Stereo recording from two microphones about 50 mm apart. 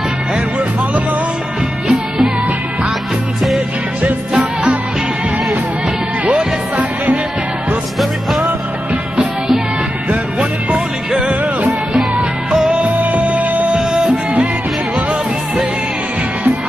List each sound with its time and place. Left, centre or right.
1.9 s music: centre
8.0 s music: centre
10.0 s music: right
11.1 s music: centre; by 13.7 s right
13.7 s music: centre